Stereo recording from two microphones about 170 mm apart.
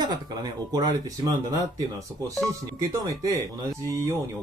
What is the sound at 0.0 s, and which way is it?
Speech, 25° right (ahead or behind).